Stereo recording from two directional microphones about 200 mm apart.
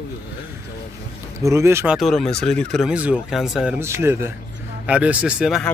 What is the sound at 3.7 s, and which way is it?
Speech, 10° right (ahead or behind).